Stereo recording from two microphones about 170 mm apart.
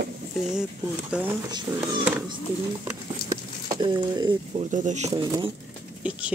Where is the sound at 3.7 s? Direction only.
25° right (ahead or behind).